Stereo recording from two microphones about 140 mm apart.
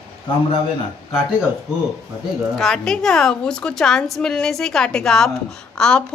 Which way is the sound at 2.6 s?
5° left (ahead or behind).